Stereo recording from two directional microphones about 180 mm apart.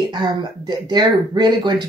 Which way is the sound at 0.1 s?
25° right (ahead or behind).